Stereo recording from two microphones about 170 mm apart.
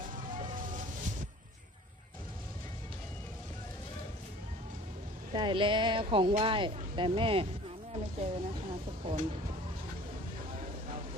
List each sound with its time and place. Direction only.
5.3 s speech: 30° right (ahead or behind)